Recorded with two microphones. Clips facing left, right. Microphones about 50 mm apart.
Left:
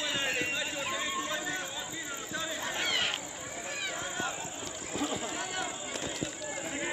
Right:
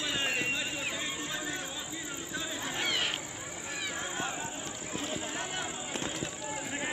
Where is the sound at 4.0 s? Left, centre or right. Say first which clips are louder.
Even; centre.